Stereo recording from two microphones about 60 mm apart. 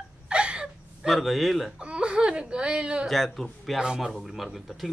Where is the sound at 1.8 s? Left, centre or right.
Centre.